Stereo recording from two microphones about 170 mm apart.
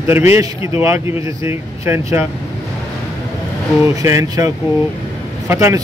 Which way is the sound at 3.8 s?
20° right (ahead or behind).